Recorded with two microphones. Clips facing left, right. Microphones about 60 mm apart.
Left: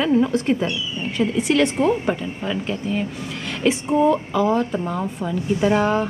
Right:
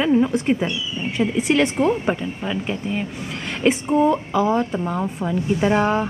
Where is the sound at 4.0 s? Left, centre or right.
Centre.